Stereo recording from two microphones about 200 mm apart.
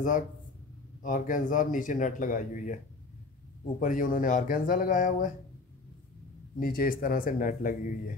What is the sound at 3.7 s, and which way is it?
Speech, 40° left (ahead or behind).